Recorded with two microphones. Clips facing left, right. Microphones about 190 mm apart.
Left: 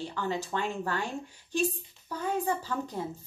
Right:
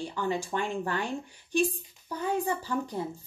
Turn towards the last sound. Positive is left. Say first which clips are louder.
# right 2 dB
turn(degrees=-15)  # may be behind; listen again after turning